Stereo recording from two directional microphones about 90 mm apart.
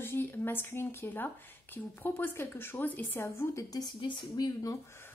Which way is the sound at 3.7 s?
50° left (ahead or behind).